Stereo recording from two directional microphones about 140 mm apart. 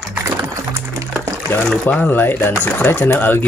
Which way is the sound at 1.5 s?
10° left (ahead or behind).